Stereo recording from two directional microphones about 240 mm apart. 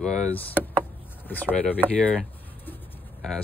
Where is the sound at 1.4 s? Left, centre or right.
Centre.